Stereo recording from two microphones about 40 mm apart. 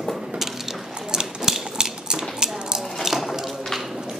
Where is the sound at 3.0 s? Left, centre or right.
Centre.